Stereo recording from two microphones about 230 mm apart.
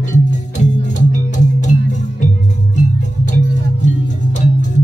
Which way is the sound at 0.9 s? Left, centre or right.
Left.